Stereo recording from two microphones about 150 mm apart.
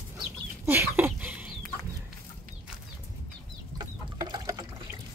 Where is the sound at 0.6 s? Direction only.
15° right (ahead or behind).